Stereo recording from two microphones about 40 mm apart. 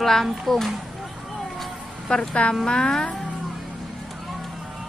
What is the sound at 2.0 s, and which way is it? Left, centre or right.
A woman's voice, centre.